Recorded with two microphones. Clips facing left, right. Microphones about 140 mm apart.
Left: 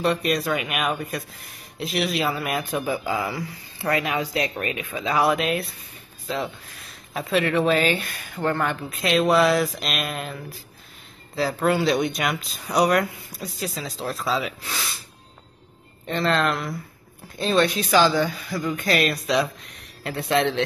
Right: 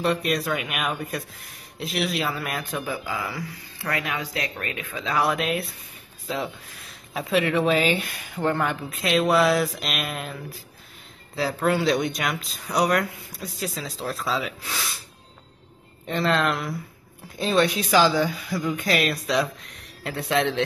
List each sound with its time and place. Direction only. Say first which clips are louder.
0.0 s speech: left 1 dB; centre (ahead or behind)
3.1 s speech: left 4 dB; 30° left (ahead or behind); by 14.9 s centre (ahead or behind)
16.1 s speech: left 1 dB; 5° right (ahead or behind)